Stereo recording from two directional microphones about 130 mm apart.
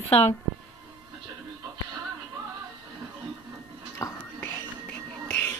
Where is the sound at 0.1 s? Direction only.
50° left (ahead or behind).